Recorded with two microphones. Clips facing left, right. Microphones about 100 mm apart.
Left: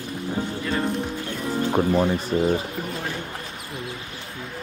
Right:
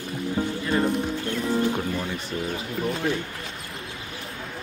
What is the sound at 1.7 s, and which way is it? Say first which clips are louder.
Speech: left 7 dB; 45° left (ahead or behind).